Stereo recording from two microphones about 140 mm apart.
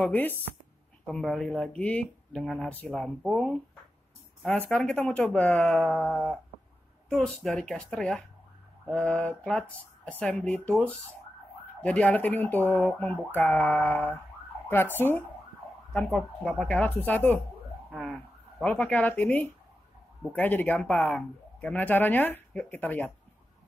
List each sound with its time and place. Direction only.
0.0 s speech: 10° left (ahead or behind)